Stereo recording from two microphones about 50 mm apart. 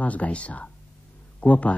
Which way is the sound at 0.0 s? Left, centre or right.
Left.